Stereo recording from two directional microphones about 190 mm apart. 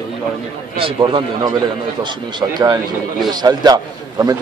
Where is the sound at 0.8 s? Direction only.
25° right (ahead or behind).